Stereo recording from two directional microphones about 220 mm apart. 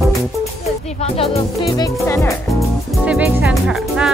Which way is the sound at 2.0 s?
10° left (ahead or behind).